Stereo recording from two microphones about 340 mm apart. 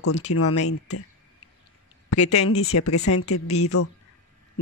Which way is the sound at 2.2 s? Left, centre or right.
Centre.